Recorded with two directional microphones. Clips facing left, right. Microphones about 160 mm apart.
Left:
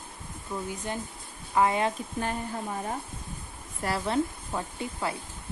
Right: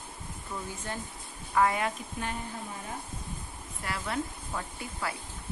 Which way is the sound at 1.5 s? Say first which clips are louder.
Left 2 dB; 25° left (ahead or behind).